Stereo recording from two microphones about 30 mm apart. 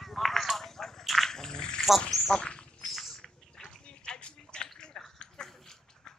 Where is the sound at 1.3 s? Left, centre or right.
Left.